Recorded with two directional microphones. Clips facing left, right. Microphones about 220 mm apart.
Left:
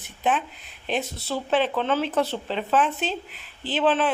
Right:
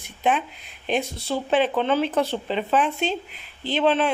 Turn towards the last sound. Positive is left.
turn(degrees=5)  # may be behind; listen again after turning